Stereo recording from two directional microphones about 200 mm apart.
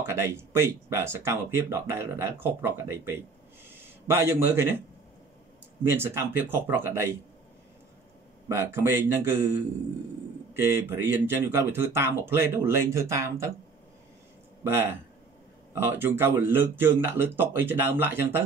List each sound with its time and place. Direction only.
0.0 s speech: 15° right (ahead or behind)
5.9 s speech: 10° right (ahead or behind)
8.5 s speech: 15° right (ahead or behind)
14.6 s speech: 10° right (ahead or behind)